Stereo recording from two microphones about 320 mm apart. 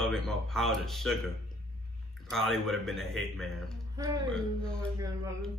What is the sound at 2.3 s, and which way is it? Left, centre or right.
Speech, centre.